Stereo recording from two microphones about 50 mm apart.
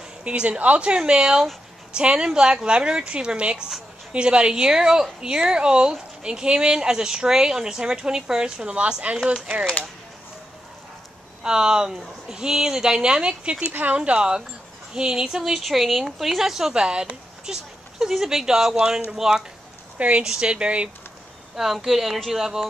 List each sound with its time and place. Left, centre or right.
0.2 s a woman's voice: right
11.4 s a woman's voice: centre
20.0 s a woman's voice: right
21.5 s speech: centre